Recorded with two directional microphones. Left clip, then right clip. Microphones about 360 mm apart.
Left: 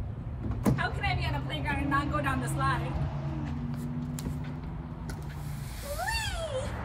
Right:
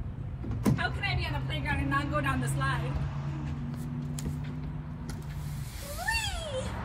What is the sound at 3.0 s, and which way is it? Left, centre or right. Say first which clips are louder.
Vehicle: left 2 dB; left.